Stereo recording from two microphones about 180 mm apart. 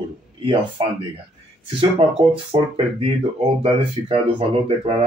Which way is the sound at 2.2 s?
35° right (ahead or behind).